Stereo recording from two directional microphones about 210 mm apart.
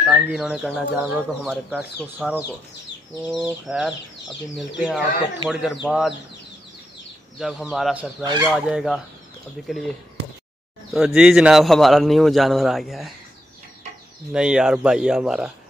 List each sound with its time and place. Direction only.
0.1 s a man's voice: 5° right (ahead or behind)
7.3 s a man's voice: centre (ahead or behind)
8.2 s speech: 15° right (ahead or behind)
8.5 s a man's voice: 5° right (ahead or behind)
10.9 s a man's voice: centre (ahead or behind)
14.3 s a man's voice: 5° right (ahead or behind)